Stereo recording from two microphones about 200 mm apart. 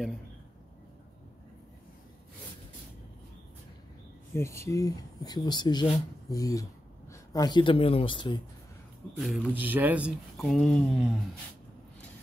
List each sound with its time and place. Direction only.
4.4 s speech: 15° left (ahead or behind)
9.1 s speech: centre (ahead or behind)